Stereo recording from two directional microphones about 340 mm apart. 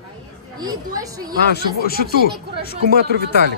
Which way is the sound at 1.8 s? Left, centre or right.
Left.